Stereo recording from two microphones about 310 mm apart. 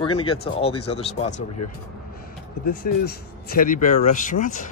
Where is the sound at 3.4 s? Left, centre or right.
Left.